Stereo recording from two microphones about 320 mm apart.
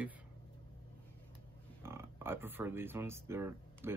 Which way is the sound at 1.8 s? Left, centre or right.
Centre.